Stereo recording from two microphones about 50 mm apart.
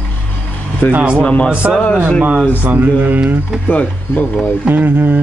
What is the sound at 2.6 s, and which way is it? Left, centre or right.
Speech, right.